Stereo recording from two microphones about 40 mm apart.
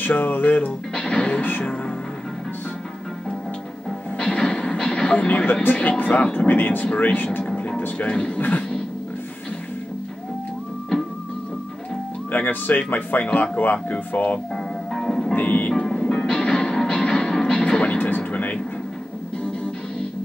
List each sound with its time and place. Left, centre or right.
0.0 s music: left
0.9 s music: left
4.2 s music: centre
5.5 s speech: left
7.4 s music: left
12.3 s speech: left
14.5 s music: centre
15.3 s speech: left
15.7 s music: centre
17.8 s music: left